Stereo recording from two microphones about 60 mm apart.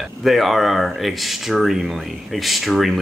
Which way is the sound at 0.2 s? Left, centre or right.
Centre.